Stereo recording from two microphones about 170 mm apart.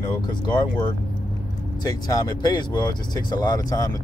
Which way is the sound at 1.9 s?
25° left (ahead or behind).